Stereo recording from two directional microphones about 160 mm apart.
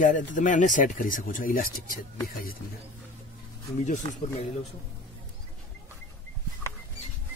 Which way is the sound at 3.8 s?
50° left (ahead or behind).